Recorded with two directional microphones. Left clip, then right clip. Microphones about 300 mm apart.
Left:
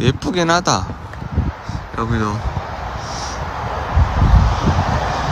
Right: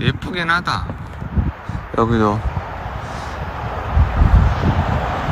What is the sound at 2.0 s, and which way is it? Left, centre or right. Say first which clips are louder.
Speech: right 5 dB; centre.